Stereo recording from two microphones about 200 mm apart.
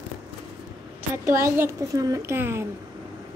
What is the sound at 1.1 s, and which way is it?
A woman's voice, 15° right (ahead or behind).